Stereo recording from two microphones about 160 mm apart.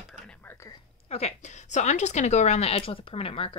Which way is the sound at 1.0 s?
40° left (ahead or behind).